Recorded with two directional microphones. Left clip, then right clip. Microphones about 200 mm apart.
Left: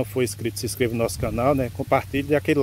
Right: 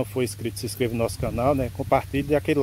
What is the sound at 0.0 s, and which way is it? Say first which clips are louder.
Speech: left 2 dB; 5° left (ahead or behind).